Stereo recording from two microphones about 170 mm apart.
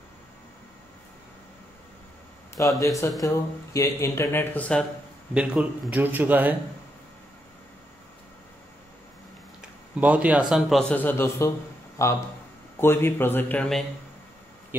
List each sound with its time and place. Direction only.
2.6 s speech: 15° left (ahead or behind)
5.3 s speech: 5° right (ahead or behind)
9.6 s a sound: 10° right (ahead or behind)
10.5 s speech: centre (ahead or behind)